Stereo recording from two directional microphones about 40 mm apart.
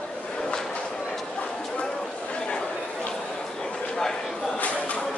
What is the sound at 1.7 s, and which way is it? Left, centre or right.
Chatter, left.